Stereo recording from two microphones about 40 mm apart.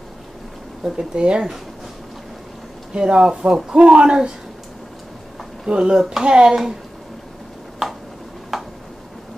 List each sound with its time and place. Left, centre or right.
0.8 s speech: right
2.9 s speech: right
5.7 s speech: right
8.5 s a sound: centre